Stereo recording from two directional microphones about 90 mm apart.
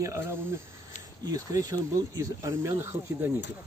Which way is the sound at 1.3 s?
40° right (ahead or behind).